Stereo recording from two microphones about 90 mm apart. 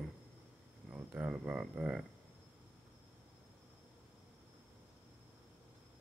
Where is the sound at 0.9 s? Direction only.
15° right (ahead or behind).